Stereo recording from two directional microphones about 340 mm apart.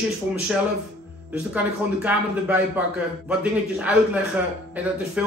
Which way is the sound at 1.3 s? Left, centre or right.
Centre.